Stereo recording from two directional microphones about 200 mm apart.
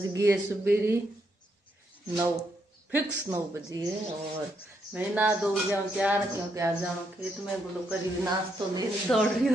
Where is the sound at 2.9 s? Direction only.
15° right (ahead or behind).